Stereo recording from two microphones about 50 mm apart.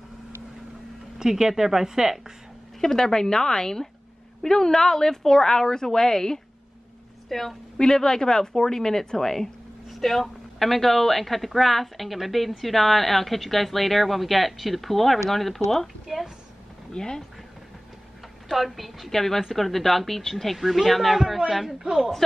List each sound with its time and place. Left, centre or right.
1.1 s a woman's voice: centre
2.8 s a woman's voice: centre
16.9 s a woman's voice: centre
18.5 s speech: centre